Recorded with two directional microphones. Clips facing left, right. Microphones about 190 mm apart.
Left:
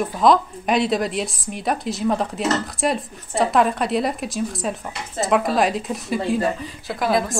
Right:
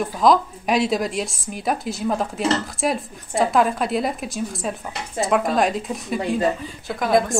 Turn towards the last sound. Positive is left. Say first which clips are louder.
# even
turn(degrees=0)  # may be behind; listen again after turning